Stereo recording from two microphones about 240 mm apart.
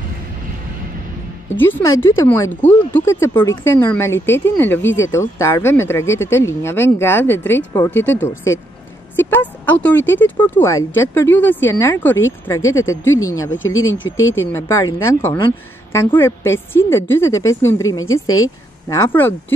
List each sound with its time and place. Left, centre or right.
1.6 s speech: centre
12.6 s speech: left
14.5 s speech: centre
18.9 s speech: centre